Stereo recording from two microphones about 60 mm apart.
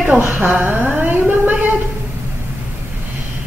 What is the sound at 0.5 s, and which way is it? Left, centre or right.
Humming, right.